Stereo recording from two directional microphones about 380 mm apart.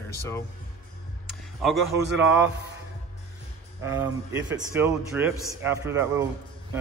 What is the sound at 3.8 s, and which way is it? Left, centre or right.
A man's voice, centre.